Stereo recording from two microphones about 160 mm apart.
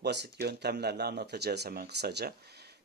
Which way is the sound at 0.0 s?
90° right.